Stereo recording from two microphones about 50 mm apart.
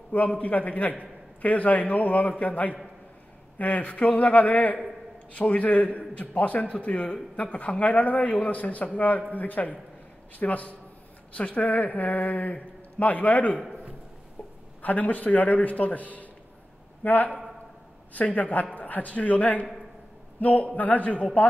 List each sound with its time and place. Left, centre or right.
0.3 s a man's voice: left
14.8 s speech: left